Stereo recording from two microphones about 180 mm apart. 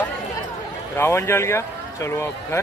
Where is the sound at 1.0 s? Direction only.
15° left (ahead or behind).